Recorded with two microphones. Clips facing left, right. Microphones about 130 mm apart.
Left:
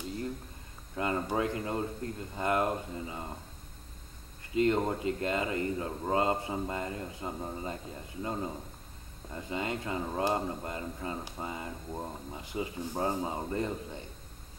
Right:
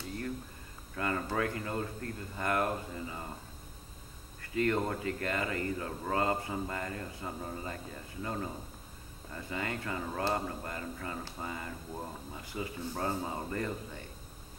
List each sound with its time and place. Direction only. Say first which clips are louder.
0.9 s speech: left 2 dB; 20° left (ahead or behind)
4.4 s speech: left 3 dB; 20° left (ahead or behind)